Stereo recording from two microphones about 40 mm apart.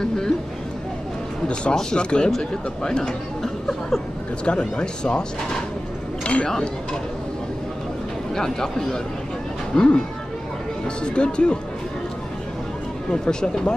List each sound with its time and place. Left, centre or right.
1.5 s speech: left
4.5 s speech: left
6.2 s speech: left
8.4 s speech: centre
11.1 s speech: left
13.1 s speech: centre